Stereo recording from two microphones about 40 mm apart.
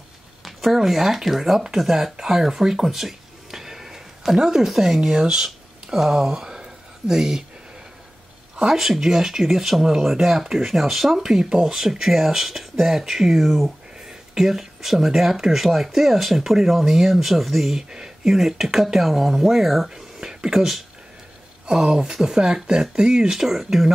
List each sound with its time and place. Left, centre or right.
0.4 s speech: centre
8.5 s speech: centre
17.8 s speech: centre
19.9 s speech: centre
21.6 s speech: centre